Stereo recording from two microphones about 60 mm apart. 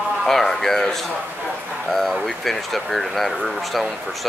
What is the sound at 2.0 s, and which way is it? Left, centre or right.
Speech, centre.